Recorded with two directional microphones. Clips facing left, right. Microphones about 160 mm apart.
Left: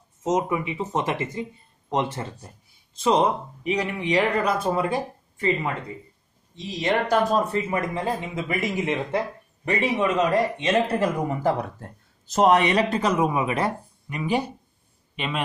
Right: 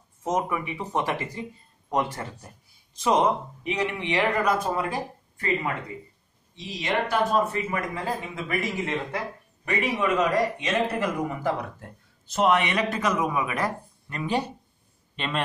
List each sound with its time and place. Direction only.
0.2 s a man's voice: 20° left (ahead or behind)
4.4 s speech: 25° left (ahead or behind)
6.5 s speech: 40° left (ahead or behind)
7.7 s a man's voice: 25° left (ahead or behind)
14.0 s a man's voice: 10° left (ahead or behind)